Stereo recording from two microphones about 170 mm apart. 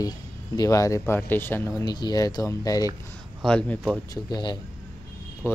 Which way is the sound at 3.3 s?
5° left (ahead or behind).